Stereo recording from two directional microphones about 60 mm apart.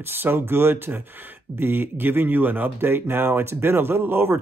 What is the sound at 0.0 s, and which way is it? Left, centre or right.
Speech, right.